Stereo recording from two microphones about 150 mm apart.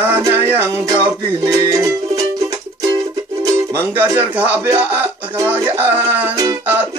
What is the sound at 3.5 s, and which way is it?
Speech, 15° right (ahead or behind).